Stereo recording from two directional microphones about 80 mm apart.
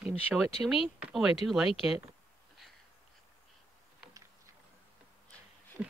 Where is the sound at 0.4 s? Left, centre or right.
Centre.